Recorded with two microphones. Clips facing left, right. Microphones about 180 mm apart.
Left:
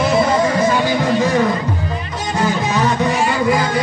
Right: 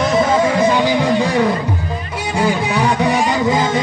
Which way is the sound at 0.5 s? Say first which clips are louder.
Right 2 dB; 15° right (ahead or behind).